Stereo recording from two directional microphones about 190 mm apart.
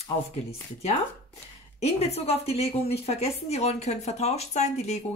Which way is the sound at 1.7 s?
35° left (ahead or behind).